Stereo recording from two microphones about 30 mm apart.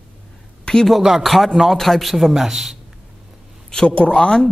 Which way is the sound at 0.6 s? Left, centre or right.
Left.